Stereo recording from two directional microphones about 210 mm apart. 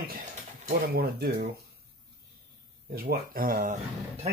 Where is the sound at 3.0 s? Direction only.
45° right (ahead or behind).